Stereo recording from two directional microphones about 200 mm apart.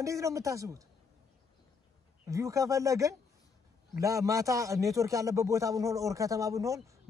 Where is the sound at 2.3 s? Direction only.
15° right (ahead or behind).